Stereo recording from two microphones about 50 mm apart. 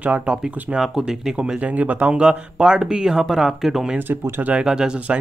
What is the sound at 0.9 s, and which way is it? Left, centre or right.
Speech, centre.